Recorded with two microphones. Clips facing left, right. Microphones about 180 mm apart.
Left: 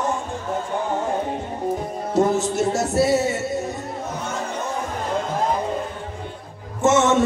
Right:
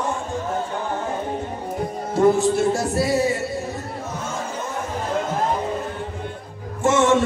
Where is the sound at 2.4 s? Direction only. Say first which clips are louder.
Right 2 dB; 20° left (ahead or behind).